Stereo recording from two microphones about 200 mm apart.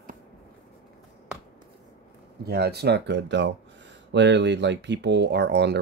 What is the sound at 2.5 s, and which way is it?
Speech, 55° right (ahead or behind).